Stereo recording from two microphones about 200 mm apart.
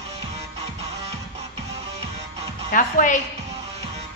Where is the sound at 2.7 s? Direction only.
40° left (ahead or behind).